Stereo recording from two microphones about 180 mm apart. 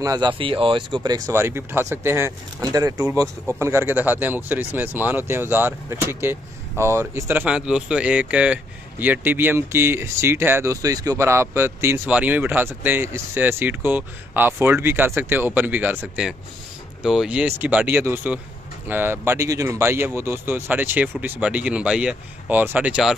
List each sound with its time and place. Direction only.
0.0 s speech: 20° right (ahead or behind); by 23.1 s 5° right (ahead or behind)